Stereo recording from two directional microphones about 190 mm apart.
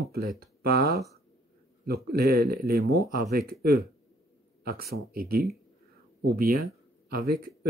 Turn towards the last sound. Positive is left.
turn(degrees=-55)  # may be behind; listen again after turning